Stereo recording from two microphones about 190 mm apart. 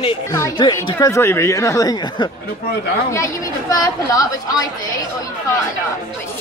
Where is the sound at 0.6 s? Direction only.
25° left (ahead or behind).